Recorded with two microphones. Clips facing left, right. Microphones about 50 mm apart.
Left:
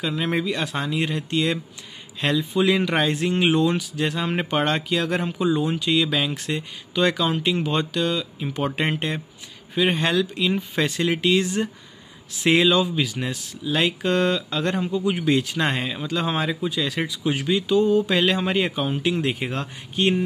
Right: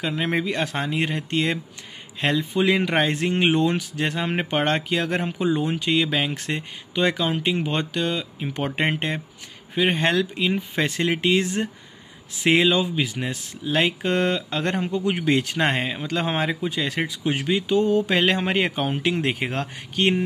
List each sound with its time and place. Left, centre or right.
0.0 s speech: right
7.0 s speech: right
12.4 s speech: right